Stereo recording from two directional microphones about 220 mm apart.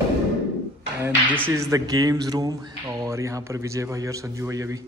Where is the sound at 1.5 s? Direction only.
15° right (ahead or behind).